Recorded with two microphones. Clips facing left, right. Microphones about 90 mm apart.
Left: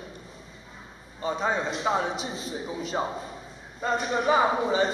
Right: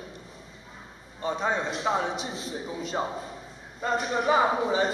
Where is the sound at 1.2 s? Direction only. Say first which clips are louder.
Left 1 dB; 5° left (ahead or behind).